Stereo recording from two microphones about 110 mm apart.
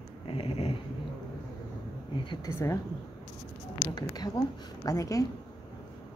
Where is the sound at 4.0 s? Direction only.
35° left (ahead or behind).